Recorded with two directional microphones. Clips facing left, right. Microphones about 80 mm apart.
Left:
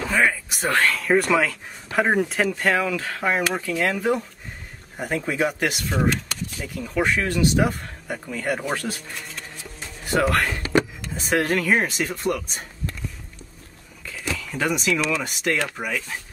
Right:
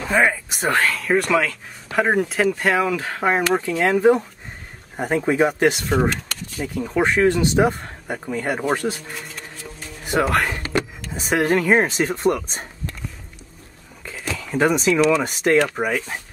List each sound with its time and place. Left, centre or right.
0.1 s speech: right
0.8 s speech: centre
2.6 s speech: centre
10.0 s speech: centre
14.0 s speech: right